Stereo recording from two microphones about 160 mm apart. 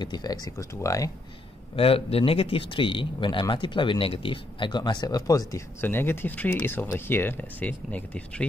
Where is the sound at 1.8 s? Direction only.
35° left (ahead or behind).